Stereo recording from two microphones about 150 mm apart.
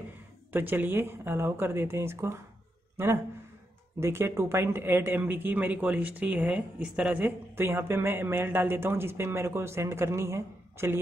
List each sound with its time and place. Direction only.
0.5 s speech: 10° right (ahead or behind)
4.0 s speech: 15° right (ahead or behind)